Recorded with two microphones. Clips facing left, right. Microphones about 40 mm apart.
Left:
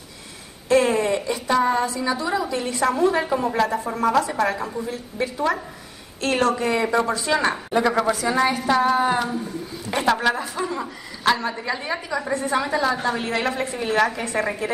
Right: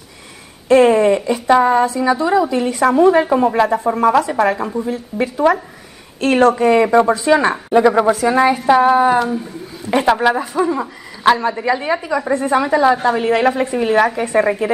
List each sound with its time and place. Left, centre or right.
0.7 s a woman's voice: right
13.3 s a woman's voice: right